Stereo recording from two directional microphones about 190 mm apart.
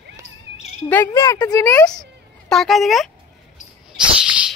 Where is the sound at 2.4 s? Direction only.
Centre (ahead or behind).